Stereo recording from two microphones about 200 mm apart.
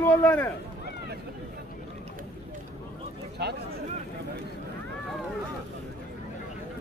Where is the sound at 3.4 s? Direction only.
55° right (ahead or behind).